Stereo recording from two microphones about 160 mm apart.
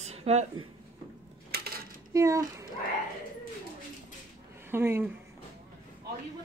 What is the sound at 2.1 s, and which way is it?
Speech, 20° right (ahead or behind).